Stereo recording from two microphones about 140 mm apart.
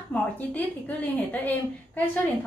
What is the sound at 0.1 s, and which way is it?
A woman's voice, 10° left (ahead or behind).